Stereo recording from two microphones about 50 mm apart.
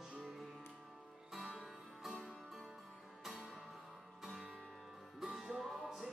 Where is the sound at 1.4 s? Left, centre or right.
Centre.